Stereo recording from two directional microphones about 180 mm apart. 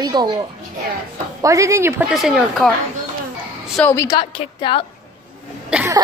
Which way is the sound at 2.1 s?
Centre (ahead or behind).